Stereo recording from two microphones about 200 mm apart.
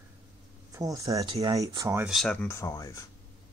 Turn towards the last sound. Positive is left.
turn(degrees=15)  # may be behind; listen again after turning